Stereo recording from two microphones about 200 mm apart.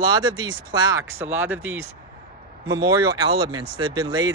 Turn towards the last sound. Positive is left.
turn(degrees=-20)  # may be behind; listen again after turning